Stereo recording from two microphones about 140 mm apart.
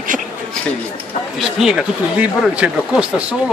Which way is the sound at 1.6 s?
5° right (ahead or behind).